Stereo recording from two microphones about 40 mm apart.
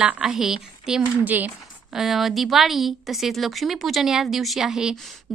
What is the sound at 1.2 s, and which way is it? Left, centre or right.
Speech, right.